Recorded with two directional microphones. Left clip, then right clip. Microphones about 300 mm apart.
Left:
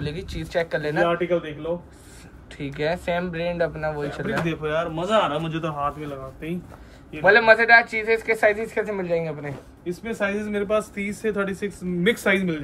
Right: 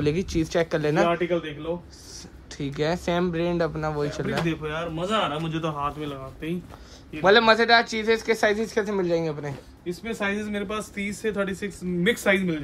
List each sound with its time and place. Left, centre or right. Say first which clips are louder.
0.6 s speech: left 1 dB; right
0.9 s speech: left 3 dB; centre
2.5 s speech: left 1 dB; right
4.2 s speech: left 1 dB; centre
7.3 s speech: left 4 dB; right
9.8 s speech: left 2 dB; centre